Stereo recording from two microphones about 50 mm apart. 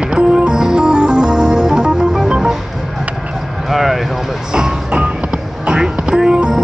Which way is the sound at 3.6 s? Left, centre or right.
Centre.